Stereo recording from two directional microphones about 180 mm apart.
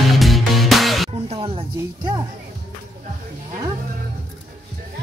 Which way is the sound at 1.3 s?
30° right (ahead or behind).